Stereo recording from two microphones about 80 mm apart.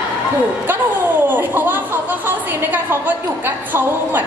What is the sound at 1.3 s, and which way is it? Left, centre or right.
Chatter, right.